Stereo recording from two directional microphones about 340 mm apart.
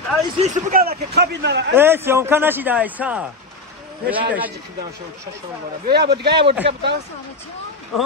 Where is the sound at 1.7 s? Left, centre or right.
Centre.